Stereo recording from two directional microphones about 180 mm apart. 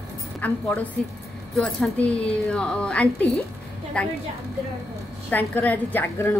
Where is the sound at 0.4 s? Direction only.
10° left (ahead or behind).